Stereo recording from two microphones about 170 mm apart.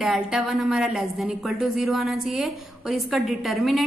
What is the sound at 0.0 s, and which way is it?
A woman's voice, centre (ahead or behind).